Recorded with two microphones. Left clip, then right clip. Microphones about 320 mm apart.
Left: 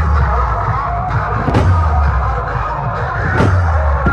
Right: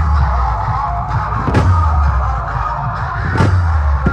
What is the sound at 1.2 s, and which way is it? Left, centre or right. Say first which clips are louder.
Music: left 1 dB; left.